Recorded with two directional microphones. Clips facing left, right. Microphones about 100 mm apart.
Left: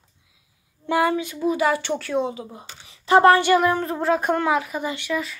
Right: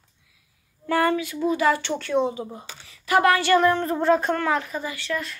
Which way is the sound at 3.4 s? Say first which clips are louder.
Even; 10° left (ahead or behind).